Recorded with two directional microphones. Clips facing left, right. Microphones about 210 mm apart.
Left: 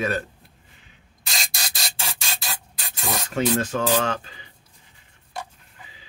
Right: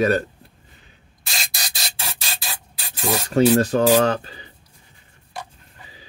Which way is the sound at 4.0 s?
35° right (ahead or behind).